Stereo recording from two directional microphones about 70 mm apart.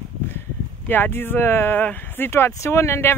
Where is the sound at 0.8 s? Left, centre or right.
Left.